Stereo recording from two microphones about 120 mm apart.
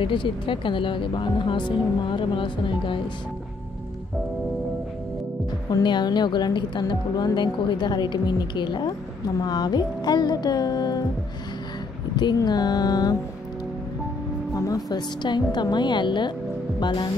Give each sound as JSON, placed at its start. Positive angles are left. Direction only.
{"t": 0.0, "sound": "speech", "side_deg": 45}
{"t": 5.7, "sound": "a woman's voice", "side_deg": 35}
{"t": 12.2, "sound": "a woman's voice", "side_deg": 35}
{"t": 14.5, "sound": "a woman's voice", "side_deg": 30}